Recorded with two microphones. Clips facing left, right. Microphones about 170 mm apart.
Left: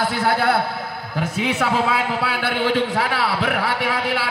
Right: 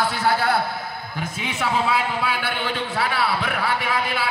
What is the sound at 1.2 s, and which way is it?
A man's voice, 75° left (ahead or behind).